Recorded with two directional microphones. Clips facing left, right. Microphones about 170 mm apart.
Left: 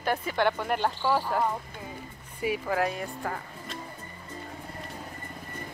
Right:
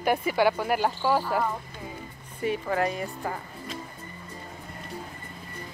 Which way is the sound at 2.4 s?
5° left (ahead or behind).